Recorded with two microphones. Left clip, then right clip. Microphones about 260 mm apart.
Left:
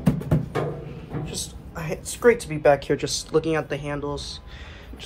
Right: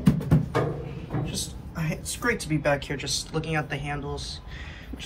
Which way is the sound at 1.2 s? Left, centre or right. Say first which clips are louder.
Even; left.